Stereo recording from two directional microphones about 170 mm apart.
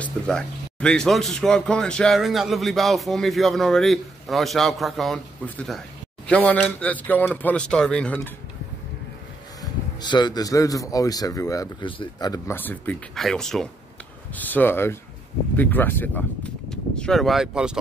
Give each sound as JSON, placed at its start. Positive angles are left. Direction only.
{"t": 0.0, "sound": "a man's voice", "side_deg": 5}
{"t": 9.6, "sound": "speech", "side_deg": 25}
{"t": 12.5, "sound": "a man's voice", "side_deg": 10}